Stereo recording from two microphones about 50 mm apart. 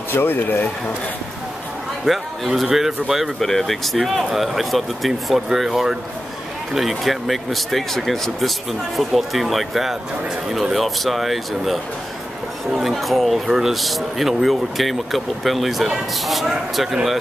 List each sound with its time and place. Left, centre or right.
0.1 s speech: left
2.0 s a man's voice: centre
3.3 s a man's voice: centre
12.9 s a man's voice: centre